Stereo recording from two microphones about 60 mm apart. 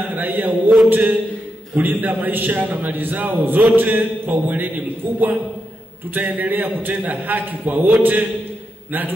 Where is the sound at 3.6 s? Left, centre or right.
Right.